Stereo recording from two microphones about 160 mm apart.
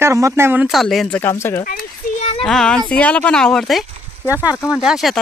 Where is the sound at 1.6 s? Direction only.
55° left (ahead or behind).